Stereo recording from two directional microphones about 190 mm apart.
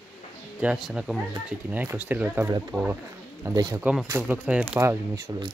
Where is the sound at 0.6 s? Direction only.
5° right (ahead or behind).